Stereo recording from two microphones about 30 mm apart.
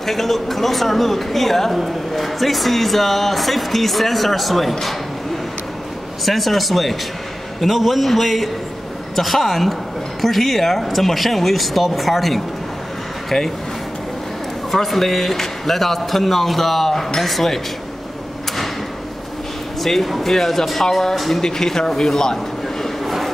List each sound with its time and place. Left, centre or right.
0.0 s speech: centre
6.2 s speech: centre
14.7 s speech: centre
19.8 s speech: centre
21.1 s speech: centre
21.4 s speech: centre